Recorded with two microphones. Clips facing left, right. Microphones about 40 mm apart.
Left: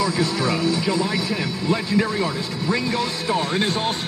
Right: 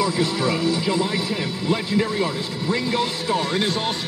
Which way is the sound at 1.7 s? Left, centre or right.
Left.